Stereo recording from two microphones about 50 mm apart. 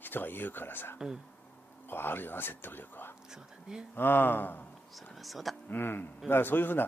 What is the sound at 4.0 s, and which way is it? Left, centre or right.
Speech, left.